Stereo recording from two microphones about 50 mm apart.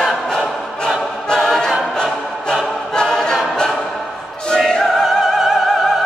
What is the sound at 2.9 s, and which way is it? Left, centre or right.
Choir, centre.